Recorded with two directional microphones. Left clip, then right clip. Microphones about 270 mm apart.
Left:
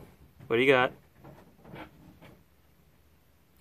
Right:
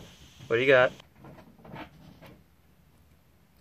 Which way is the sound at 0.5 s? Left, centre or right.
Centre.